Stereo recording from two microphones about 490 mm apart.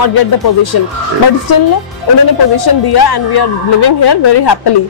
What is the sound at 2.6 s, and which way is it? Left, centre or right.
A woman's voice, left.